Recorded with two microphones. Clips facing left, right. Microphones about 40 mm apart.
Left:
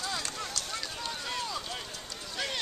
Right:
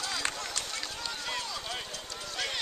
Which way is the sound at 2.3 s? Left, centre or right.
Centre.